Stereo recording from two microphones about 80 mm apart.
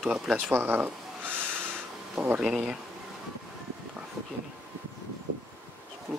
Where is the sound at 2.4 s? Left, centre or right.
Centre.